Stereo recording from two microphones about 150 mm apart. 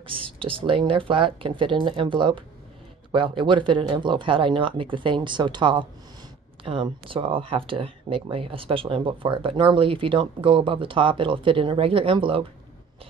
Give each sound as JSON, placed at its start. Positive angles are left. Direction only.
{"t": 0.0, "sound": "speech", "side_deg": -35}